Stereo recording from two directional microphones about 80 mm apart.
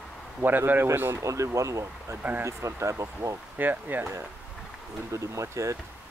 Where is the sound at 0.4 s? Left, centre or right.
Right.